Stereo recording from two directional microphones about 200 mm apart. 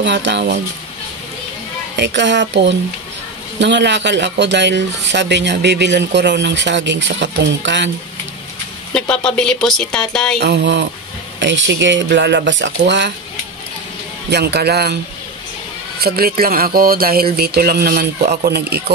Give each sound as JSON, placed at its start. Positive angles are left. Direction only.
{"t": 0.0, "sound": "speech", "side_deg": -60}
{"t": 2.0, "sound": "speech", "side_deg": -60}
{"t": 8.9, "sound": "speech", "side_deg": 5}
{"t": 10.4, "sound": "speech", "side_deg": -60}
{"t": 14.3, "sound": "speech", "side_deg": -55}
{"t": 16.0, "sound": "speech", "side_deg": -50}